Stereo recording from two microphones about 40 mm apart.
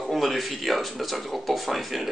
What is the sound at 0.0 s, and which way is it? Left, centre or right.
A man's voice, centre.